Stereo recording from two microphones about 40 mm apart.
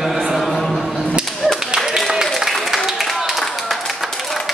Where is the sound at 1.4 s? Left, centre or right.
Right.